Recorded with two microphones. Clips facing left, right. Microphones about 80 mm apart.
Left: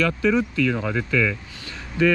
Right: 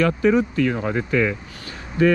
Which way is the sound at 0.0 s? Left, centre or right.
Right.